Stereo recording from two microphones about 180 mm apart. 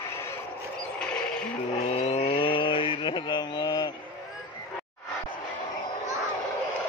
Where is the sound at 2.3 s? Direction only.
30° left (ahead or behind).